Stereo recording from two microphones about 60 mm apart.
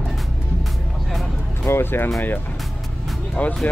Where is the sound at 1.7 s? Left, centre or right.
Left.